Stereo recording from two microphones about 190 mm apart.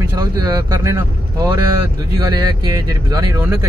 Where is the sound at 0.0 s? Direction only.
20° right (ahead or behind).